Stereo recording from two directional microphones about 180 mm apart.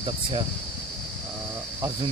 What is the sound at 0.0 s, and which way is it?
Speech, 30° right (ahead or behind).